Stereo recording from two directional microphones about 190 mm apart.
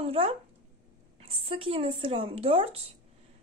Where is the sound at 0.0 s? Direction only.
30° right (ahead or behind).